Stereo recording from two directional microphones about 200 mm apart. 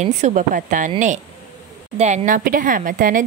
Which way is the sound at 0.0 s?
35° right (ahead or behind).